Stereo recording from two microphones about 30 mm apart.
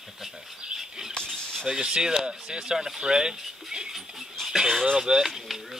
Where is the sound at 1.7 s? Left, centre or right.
Right.